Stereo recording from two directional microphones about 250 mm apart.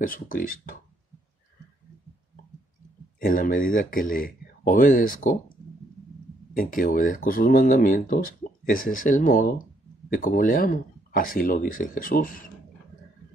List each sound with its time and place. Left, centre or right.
0.0 s speech: left
3.2 s speech: left
6.5 s speech: left